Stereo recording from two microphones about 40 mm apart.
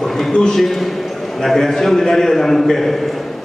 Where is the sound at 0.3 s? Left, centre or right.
Left.